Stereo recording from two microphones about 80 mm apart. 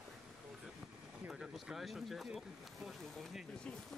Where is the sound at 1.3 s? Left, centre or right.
Centre.